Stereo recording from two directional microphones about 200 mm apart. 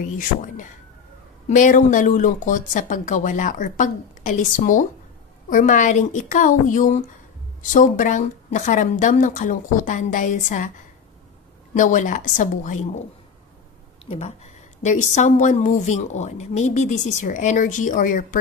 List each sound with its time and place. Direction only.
0.2 s a woman's voice: 40° left (ahead or behind)
11.7 s a woman's voice: 40° left (ahead or behind)
14.0 s a woman's voice: 30° left (ahead or behind)